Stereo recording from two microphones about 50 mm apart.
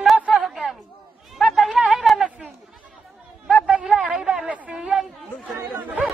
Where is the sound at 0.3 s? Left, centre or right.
Centre.